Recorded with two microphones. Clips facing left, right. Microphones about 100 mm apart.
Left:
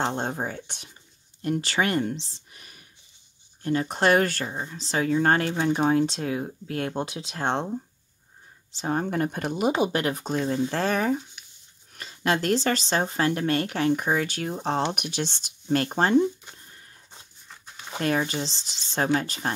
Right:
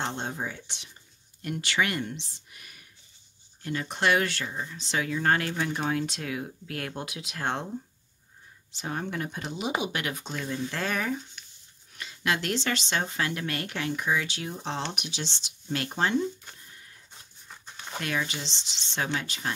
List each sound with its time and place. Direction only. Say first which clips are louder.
0.0 s speech: left 5 dB; 40° left (ahead or behind)
1.4 s speech: left 4 dB; 35° left (ahead or behind)
8.7 s speech: left 7 dB; 35° left (ahead or behind); by 9.7 s 55° left (ahead or behind)
9.8 s speech: left 7 dB; 35° left (ahead or behind)
17.5 s a sound: even; centre (ahead or behind)
17.9 s speech: left 6 dB; 40° left (ahead or behind)